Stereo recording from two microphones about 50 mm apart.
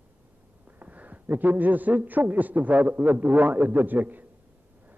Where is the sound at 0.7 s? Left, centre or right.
Right.